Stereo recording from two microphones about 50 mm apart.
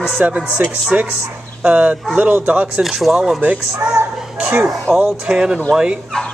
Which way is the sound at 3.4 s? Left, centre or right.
Right.